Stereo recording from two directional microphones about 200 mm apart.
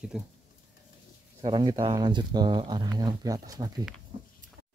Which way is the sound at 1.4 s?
25° right (ahead or behind).